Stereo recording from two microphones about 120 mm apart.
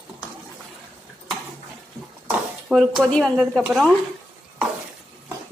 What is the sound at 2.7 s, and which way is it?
Speech, centre (ahead or behind).